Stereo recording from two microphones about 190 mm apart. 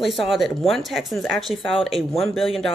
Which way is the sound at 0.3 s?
Centre (ahead or behind).